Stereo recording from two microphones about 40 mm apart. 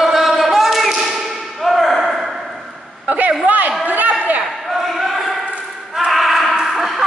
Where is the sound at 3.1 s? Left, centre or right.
Right.